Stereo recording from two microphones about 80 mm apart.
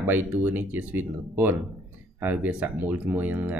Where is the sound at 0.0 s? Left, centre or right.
Right.